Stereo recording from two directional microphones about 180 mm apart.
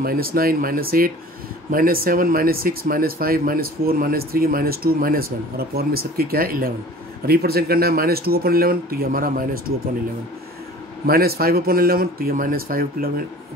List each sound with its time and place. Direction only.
0.0 s speech: 55° right (ahead or behind)
11.1 s speech: 55° right (ahead or behind)